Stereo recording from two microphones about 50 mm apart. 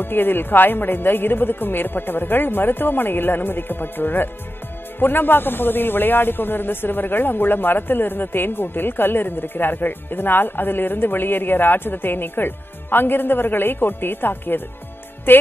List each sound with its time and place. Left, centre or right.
0.0 s a man's voice: left